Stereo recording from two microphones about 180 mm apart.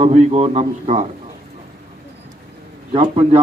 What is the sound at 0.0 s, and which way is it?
A man's voice, 35° right (ahead or behind).